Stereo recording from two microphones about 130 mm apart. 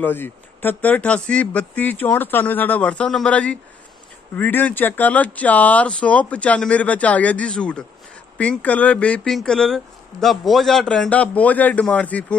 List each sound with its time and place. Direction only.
0.0 s speech: 15° left (ahead or behind)